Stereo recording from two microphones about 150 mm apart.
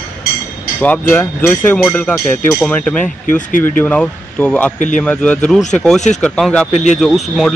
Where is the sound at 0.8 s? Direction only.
10° left (ahead or behind).